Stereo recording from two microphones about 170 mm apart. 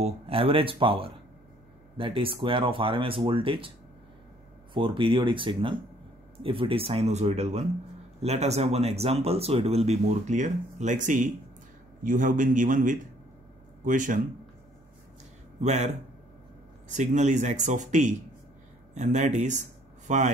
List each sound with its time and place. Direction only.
0.0 s speech: 35° right (ahead or behind)
4.7 s speech: 30° right (ahead or behind); by 14.2 s 50° right (ahead or behind)
15.6 s speech: 45° right (ahead or behind)